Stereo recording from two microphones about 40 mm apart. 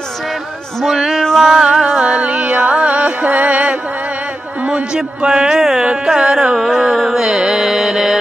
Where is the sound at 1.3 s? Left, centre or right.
Centre.